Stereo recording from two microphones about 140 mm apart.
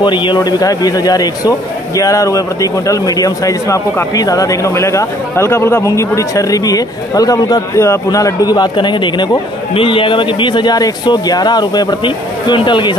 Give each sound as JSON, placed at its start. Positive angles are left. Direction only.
{"t": 0.0, "sound": "speech", "side_deg": 35}